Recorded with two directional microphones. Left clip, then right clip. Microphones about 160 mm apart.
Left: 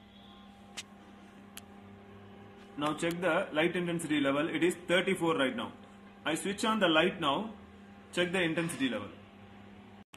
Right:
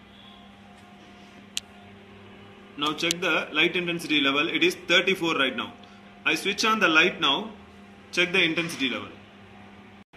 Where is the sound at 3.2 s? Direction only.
40° left (ahead or behind).